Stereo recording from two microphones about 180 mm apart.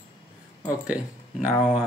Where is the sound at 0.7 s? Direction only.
5° right (ahead or behind).